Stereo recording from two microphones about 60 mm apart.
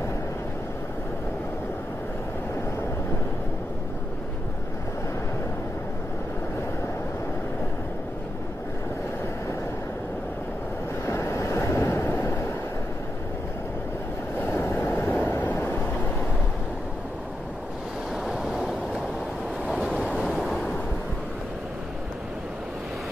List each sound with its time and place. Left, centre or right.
11.1 s waves: left
14.4 s waves: left
18.1 s waves: centre
20.2 s waves: centre